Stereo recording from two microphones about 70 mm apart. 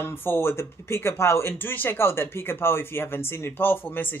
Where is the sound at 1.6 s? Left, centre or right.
Left.